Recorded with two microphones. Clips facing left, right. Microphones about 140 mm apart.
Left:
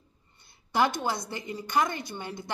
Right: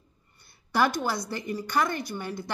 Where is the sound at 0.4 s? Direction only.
20° left (ahead or behind).